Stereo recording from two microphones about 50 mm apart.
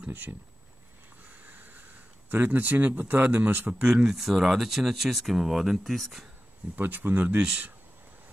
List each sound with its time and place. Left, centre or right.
0.1 s speech: right
1.4 s a sound: right
3.3 s speech: right
3.7 s speech: centre
6.7 s speech: right